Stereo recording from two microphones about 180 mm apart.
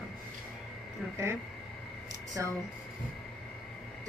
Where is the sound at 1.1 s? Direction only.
15° right (ahead or behind).